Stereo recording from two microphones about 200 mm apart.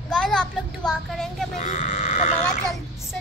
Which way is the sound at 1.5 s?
40° left (ahead or behind).